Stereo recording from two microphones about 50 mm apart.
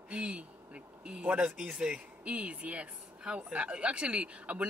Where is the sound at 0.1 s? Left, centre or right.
Right.